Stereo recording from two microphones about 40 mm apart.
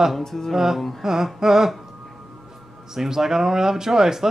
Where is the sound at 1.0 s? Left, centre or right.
Centre.